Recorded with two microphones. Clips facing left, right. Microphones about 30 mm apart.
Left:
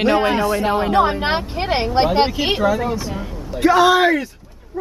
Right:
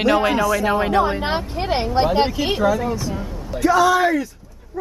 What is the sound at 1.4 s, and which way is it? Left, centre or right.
A man's voice, left.